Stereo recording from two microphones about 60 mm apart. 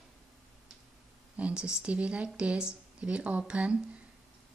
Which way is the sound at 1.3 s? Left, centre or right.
Centre.